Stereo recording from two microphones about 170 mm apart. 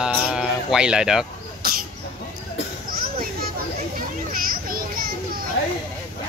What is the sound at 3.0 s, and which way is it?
Children playing, 60° right (ahead or behind).